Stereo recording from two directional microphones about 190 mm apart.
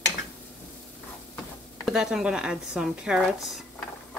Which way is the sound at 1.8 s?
5° right (ahead or behind).